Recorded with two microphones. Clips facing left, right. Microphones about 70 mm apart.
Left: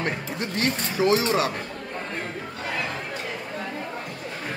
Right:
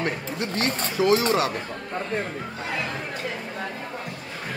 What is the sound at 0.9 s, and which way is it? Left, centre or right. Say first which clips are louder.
Speech: right 1 dB; left.